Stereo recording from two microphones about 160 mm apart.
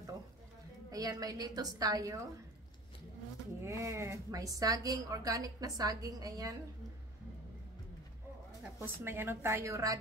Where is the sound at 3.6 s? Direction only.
20° right (ahead or behind).